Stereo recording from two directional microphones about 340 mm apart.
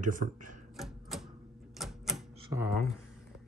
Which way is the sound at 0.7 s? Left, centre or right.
Centre.